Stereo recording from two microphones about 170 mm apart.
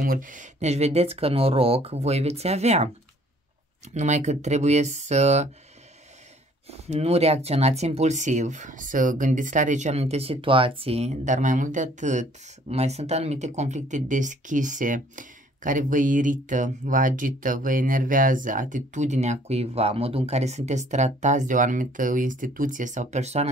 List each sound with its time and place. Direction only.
0.0 s speech: 55° right (ahead or behind)
3.9 s speech: 45° right (ahead or behind)
6.7 s speech: 40° right (ahead or behind)